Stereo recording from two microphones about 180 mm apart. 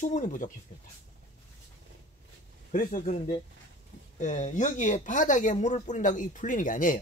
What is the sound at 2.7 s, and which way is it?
Speech, 45° left (ahead or behind).